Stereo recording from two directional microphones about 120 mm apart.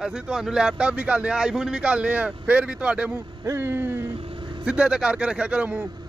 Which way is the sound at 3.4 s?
20° right (ahead or behind).